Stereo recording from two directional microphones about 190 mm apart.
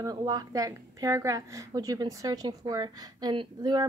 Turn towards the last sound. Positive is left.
turn(degrees=-20)  # may be behind; listen again after turning